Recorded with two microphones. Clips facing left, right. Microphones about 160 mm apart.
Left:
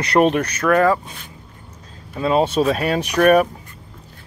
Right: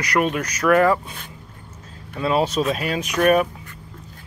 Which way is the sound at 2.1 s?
25° left (ahead or behind).